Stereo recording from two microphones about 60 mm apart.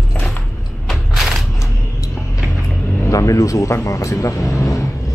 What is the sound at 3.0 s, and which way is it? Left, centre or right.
Music, left.